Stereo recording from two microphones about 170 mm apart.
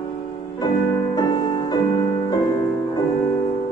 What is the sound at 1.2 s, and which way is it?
Music, 25° left (ahead or behind).